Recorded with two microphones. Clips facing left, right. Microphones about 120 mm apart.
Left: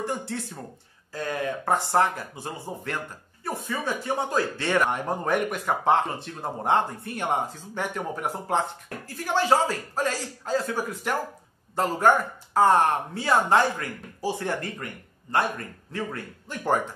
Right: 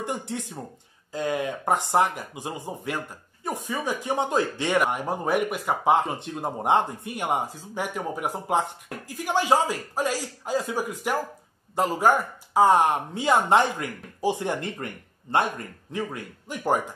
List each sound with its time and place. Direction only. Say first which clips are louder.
0.0 s speech: even; 20° right (ahead or behind)